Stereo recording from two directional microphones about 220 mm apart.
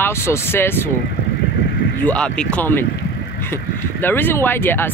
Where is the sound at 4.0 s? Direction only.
10° left (ahead or behind).